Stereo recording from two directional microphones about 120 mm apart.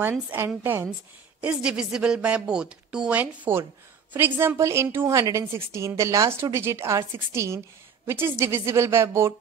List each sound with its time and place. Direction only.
0.3 s a woman's voice: 15° right (ahead or behind)